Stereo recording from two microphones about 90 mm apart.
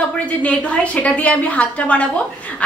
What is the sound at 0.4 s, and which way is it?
A woman's voice, 15° left (ahead or behind).